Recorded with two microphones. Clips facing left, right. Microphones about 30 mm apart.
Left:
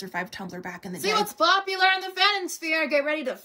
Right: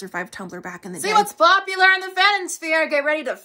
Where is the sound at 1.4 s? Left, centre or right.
Right.